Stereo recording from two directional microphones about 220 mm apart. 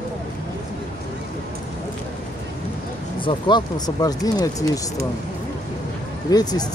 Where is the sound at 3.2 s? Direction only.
20° left (ahead or behind).